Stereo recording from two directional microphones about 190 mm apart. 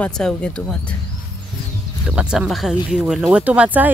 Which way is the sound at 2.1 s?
5° right (ahead or behind).